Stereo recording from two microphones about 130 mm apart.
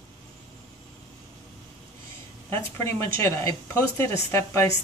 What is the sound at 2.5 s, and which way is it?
Speech, 20° left (ahead or behind).